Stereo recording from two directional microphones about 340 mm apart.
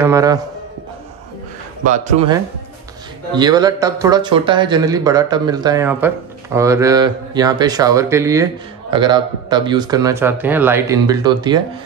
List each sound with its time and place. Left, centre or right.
0.0 s speech: centre
1.9 s speech: centre